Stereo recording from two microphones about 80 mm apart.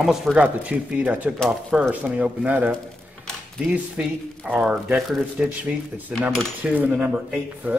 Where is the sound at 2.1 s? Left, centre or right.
Centre.